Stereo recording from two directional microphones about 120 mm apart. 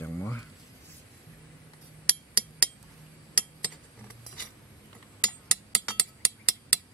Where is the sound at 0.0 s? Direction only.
20° left (ahead or behind).